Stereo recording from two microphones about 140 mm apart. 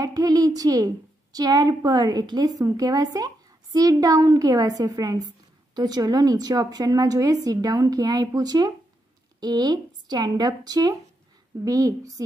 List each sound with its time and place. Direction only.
0.0 s a woman's voice: 25° right (ahead or behind)